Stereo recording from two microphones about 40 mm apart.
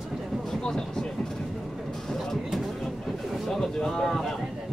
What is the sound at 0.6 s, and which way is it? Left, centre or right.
Vehicle, centre.